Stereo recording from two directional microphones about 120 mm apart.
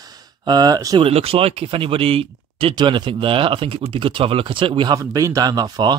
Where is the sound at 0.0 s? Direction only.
35° right (ahead or behind).